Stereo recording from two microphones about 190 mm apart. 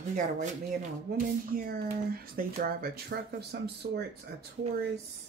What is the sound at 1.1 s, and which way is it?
Speech, 50° right (ahead or behind).